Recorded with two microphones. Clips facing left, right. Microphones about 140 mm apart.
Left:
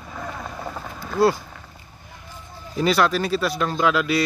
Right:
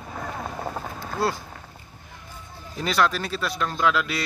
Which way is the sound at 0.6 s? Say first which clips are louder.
Right 1 dB; 25° right (ahead or behind).